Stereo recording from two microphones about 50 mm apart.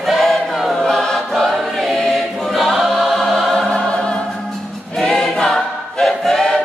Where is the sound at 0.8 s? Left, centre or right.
Centre.